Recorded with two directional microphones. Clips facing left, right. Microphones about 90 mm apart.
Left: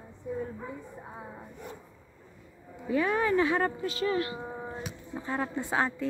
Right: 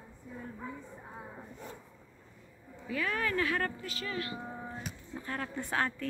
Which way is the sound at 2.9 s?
25° left (ahead or behind).